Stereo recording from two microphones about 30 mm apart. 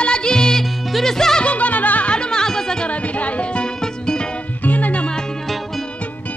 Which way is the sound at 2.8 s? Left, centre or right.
Left.